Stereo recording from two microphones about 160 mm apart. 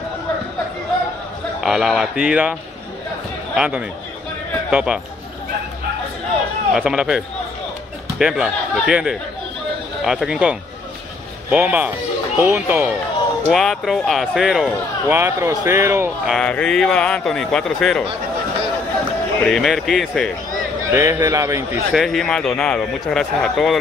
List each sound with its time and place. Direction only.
1.6 s a man's voice: 5° right (ahead or behind)
3.5 s a man's voice: 5° right (ahead or behind)
6.7 s a man's voice: 5° right (ahead or behind)
13.5 s a man's voice: centre (ahead or behind)
15.0 s speech: 15° right (ahead or behind)
16.3 s a man's voice: 5° left (ahead or behind)
19.4 s a man's voice: centre (ahead or behind)
20.9 s a man's voice: 15° right (ahead or behind)
21.9 s a man's voice: centre (ahead or behind)